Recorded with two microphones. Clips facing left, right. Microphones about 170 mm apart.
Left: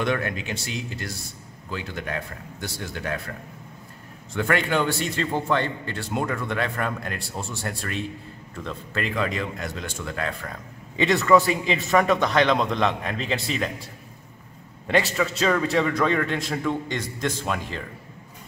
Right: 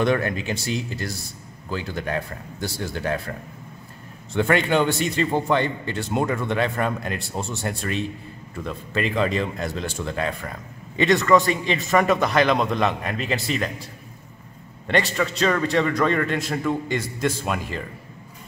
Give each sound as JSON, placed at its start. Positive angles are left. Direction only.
{"t": 0.0, "sound": "speech", "side_deg": -35}
{"t": 4.3, "sound": "a man's voice", "side_deg": -25}
{"t": 11.0, "sound": "a man's voice", "side_deg": 0}
{"t": 14.9, "sound": "a man's voice", "side_deg": 5}